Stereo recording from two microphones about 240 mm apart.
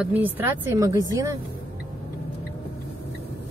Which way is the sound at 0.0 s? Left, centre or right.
Centre.